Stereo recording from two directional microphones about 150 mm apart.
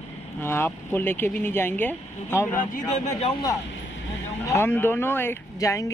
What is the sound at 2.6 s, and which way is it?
Speech, 60° left (ahead or behind).